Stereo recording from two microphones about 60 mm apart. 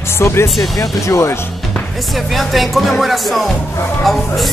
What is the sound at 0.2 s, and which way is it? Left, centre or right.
Speech, left.